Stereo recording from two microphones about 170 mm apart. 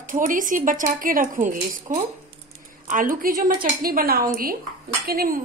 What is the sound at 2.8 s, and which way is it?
A woman's voice, 55° right (ahead or behind).